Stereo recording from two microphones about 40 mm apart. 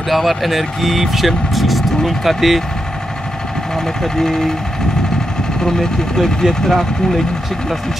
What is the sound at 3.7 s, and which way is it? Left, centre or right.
Speech, centre.